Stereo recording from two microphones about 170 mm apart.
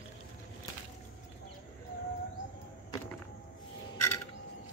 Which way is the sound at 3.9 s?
15° left (ahead or behind).